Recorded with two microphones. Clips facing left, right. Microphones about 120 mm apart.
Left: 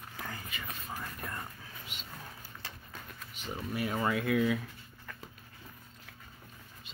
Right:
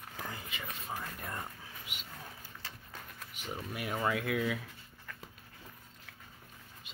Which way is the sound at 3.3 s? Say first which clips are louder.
Left 3 dB; 10° right (ahead or behind).